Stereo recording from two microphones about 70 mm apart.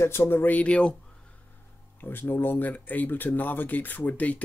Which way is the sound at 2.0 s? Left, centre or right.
Left.